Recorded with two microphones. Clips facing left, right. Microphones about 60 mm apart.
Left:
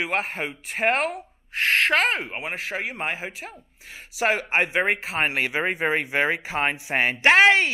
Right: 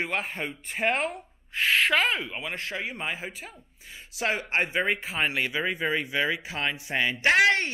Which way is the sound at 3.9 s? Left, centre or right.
Left.